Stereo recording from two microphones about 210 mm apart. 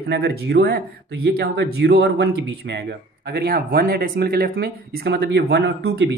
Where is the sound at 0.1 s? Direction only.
50° right (ahead or behind).